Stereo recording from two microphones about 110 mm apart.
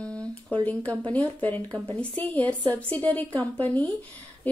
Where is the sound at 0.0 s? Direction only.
10° left (ahead or behind).